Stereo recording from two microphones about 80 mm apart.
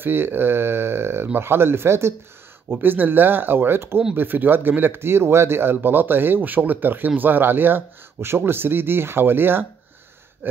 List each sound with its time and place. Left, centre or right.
0.0 s speech: right
10.4 s gasp: right